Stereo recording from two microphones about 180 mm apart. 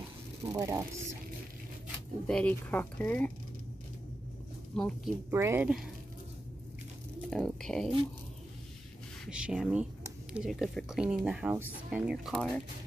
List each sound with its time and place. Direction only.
0.5 s speech: 15° right (ahead or behind)
2.2 s speech: 5° left (ahead or behind)
4.7 s speech: 5° left (ahead or behind)
5.3 s speech: 15° right (ahead or behind)
7.2 s speech: 5° left (ahead or behind)
9.2 s speech: 5° right (ahead or behind)